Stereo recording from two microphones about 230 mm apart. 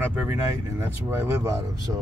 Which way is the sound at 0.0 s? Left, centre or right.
Centre.